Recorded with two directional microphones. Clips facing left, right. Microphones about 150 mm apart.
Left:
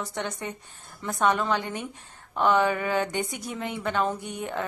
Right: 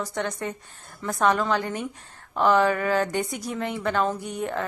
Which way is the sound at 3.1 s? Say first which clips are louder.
Right 3 dB; 45° right (ahead or behind).